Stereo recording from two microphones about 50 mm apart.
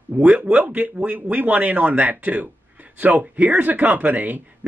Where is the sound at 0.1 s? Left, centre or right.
Right.